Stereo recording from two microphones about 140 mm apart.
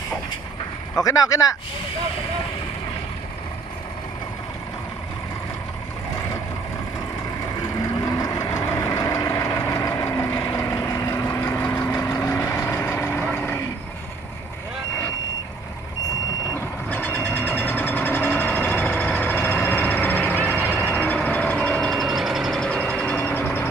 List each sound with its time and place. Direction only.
1.0 s speech: 25° left (ahead or behind)
8.0 s vehicle: 25° left (ahead or behind)
16.9 s vehicle: 15° left (ahead or behind)